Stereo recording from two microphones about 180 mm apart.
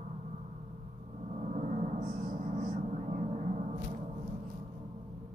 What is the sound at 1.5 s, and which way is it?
Gong, 40° right (ahead or behind).